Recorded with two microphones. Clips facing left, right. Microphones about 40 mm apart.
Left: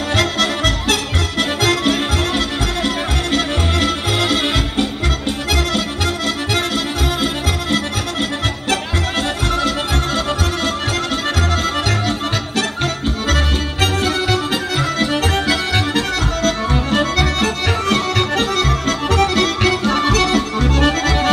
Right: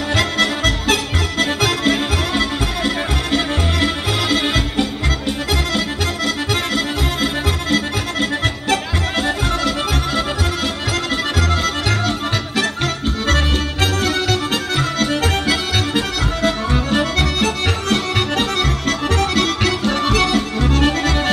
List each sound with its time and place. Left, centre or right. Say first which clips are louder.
0.1 s music: even; left
1.9 s music: even; left
6.2 s accordion: right 1 dB; left
15.0 s accordion: left 1 dB; centre
16.4 s accordion: right 1 dB; centre